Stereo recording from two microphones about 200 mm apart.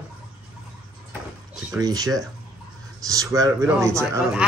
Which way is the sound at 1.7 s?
20° right (ahead or behind).